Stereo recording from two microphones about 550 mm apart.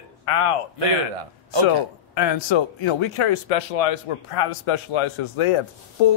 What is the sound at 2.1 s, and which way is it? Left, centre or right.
Speech, left.